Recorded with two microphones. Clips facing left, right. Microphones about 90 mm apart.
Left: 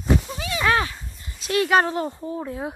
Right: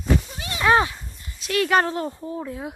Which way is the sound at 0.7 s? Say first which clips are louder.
Right 4 dB; 15° right (ahead or behind).